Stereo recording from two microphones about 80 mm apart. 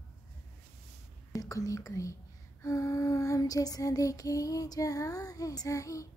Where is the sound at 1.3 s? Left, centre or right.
Left.